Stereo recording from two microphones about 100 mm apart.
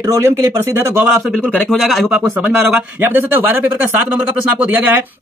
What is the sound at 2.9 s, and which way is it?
Speech, 20° right (ahead or behind).